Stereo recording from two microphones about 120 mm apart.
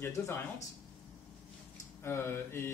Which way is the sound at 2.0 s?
20° left (ahead or behind).